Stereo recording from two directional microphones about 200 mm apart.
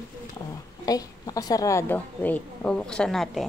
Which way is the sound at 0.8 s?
20° left (ahead or behind).